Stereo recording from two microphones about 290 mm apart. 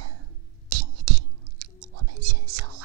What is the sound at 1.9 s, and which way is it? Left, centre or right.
Whispering, right.